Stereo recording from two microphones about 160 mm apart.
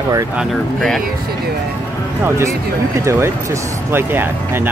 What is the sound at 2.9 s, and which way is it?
Speech, 15° right (ahead or behind).